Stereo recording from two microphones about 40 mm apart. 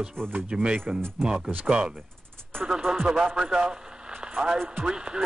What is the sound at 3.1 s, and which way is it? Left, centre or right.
A man's voice, centre.